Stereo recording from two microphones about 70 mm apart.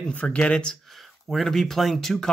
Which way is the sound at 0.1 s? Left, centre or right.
Left.